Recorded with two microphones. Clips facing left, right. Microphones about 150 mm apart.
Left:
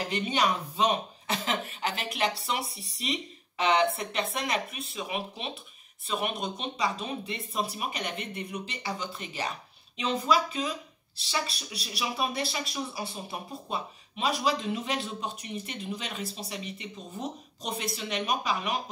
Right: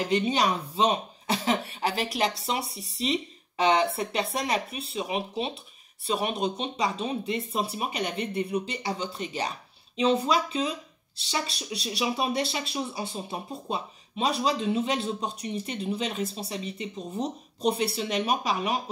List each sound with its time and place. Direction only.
0.1 s speech: 35° right (ahead or behind)